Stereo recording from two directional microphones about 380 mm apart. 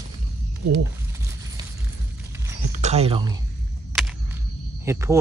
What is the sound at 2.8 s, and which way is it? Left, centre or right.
Speech, centre.